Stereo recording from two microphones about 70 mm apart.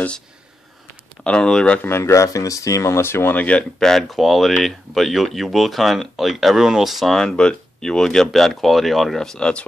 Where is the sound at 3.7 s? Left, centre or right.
Centre.